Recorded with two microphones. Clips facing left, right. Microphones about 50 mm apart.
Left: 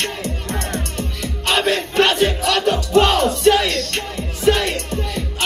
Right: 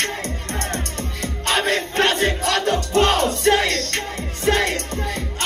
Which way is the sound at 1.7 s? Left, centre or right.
Left.